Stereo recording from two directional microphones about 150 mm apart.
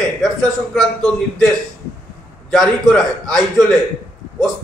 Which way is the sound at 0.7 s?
5° left (ahead or behind).